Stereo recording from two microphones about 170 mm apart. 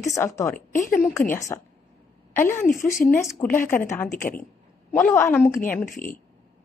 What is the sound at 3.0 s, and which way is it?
A woman's voice, 10° left (ahead or behind).